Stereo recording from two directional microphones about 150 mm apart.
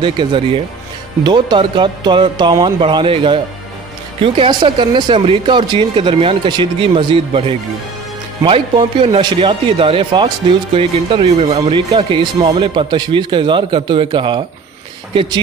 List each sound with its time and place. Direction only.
0.0 s speech: 35° right (ahead or behind)
11.7 s speech: 30° right (ahead or behind)